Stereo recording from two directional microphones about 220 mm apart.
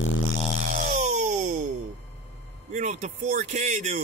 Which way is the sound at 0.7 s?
35° right (ahead or behind).